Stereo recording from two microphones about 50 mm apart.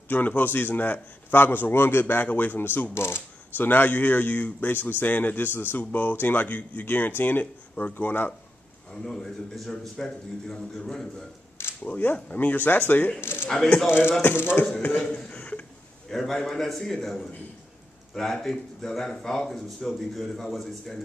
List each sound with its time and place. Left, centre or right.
0.3 s speech: left
5.8 s speech: left
8.9 s speech: centre
11.8 s speech: left
13.2 s speech: left
15.0 s a sound: left
16.1 s a man's voice: centre